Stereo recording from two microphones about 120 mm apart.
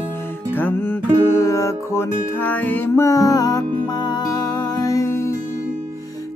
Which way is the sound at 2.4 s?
15° left (ahead or behind).